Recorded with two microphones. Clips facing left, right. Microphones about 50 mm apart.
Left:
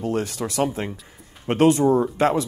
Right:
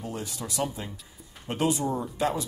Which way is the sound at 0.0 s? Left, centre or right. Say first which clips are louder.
Left 10 dB; left.